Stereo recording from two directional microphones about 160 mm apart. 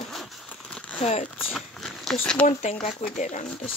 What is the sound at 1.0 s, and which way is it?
Speech, 45° left (ahead or behind).